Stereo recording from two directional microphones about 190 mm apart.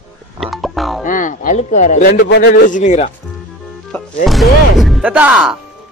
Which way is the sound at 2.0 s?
55° left (ahead or behind).